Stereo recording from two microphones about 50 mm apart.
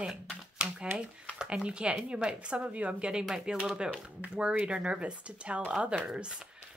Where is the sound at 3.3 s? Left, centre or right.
Centre.